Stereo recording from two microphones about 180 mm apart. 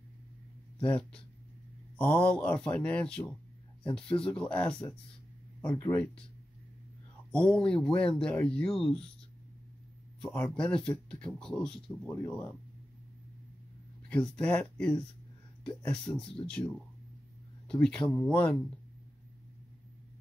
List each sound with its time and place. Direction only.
2.0 s speech: 5° left (ahead or behind)
7.2 s speech: 5° left (ahead or behind)
10.2 s speech: 5° left (ahead or behind)
14.0 s speech: 5° left (ahead or behind)
16.4 s speech: 20° left (ahead or behind)
17.6 s speech: 5° left (ahead or behind)